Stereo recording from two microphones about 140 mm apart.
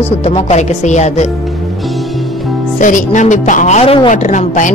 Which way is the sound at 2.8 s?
65° left (ahead or behind).